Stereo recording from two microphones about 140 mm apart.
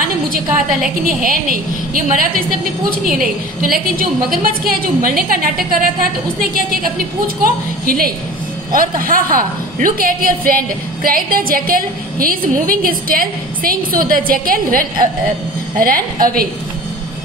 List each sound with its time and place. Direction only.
0.3 s a woman's voice: 85° right
3.1 s a man's voice: 90° right
7.8 s a woman's voice: 90° right